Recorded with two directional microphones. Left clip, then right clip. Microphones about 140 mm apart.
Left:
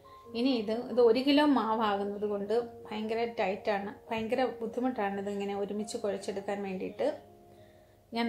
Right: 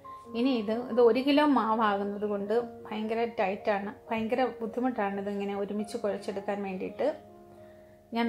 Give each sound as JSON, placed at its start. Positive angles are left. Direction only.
{"t": 0.3, "sound": "a woman's voice", "side_deg": -10}